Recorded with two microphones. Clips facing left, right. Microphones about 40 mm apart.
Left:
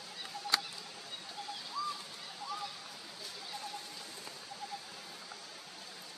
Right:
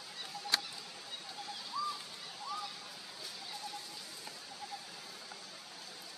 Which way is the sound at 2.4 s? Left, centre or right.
Centre.